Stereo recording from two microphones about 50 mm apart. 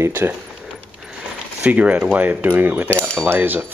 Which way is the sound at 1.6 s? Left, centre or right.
Right.